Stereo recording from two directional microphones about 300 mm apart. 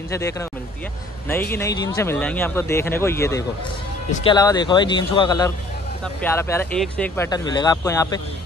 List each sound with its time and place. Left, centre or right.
0.1 s speech: centre